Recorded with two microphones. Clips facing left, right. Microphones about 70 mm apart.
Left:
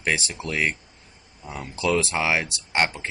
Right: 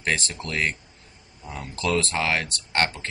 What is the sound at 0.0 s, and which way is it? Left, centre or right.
Speech, centre.